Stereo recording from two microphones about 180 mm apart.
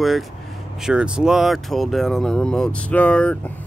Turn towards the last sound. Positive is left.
turn(degrees=5)  # may be behind; listen again after turning